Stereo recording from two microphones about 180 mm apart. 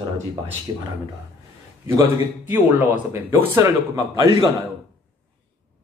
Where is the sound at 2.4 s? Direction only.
10° right (ahead or behind).